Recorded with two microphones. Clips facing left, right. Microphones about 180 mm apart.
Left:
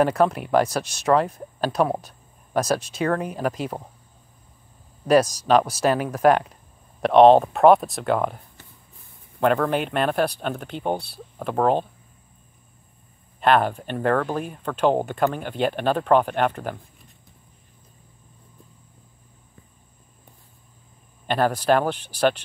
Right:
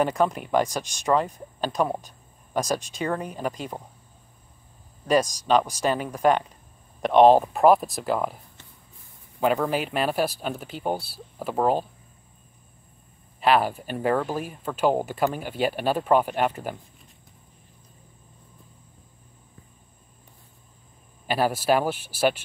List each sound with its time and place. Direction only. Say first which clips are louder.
0.0 s speech: left 3 dB; centre (ahead or behind)
2.6 s speech: left 4 dB; centre (ahead or behind)
5.0 s speech: left 4 dB; 5° left (ahead or behind)
9.4 s speech: left 3 dB; 5° right (ahead or behind)
13.4 s speech: left 2 dB; 5° right (ahead or behind)
21.3 s speech: left 2 dB; 5° right (ahead or behind)